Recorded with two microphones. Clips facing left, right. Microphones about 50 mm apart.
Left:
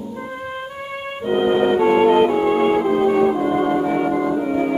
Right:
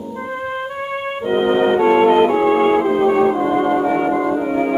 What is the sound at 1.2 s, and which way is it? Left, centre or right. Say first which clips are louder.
Music: right 1 dB; centre.